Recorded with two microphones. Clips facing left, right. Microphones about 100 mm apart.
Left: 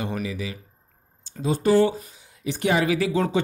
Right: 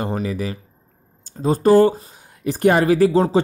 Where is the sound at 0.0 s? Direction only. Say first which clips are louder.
Right 5 dB; 40° right (ahead or behind).